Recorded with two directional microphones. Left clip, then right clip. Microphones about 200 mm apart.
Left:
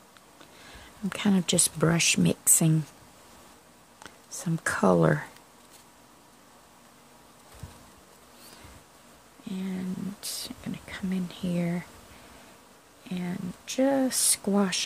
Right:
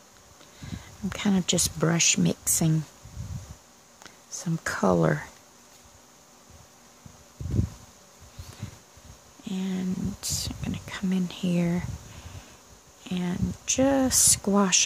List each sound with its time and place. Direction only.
0.7 s speech: centre (ahead or behind)
4.0 s speech: centre (ahead or behind)
9.4 s whispering: 15° right (ahead or behind)
13.0 s speech: 15° right (ahead or behind)